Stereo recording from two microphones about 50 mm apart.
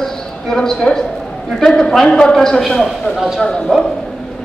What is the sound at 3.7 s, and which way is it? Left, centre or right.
Speech, centre.